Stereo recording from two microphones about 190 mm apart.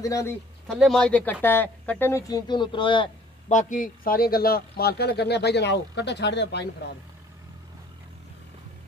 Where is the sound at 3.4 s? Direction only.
40° left (ahead or behind); by 6.9 s 65° left (ahead or behind).